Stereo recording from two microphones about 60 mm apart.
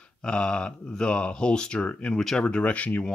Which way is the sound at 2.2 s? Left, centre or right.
Centre.